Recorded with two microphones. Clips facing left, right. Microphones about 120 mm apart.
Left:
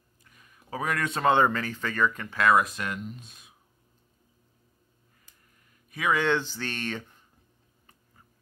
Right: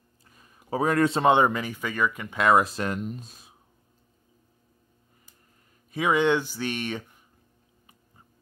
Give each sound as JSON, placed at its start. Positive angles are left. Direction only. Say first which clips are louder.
{"t": 0.2, "sound": "a sound", "louder": "right 1 dB", "side_deg": -30}
{"t": 1.2, "sound": "speech", "louder": "left 2 dB", "side_deg": -15}
{"t": 5.9, "sound": "speech", "louder": "right 3 dB", "side_deg": -25}